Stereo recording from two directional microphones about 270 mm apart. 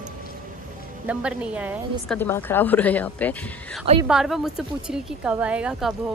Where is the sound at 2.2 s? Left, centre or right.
Centre.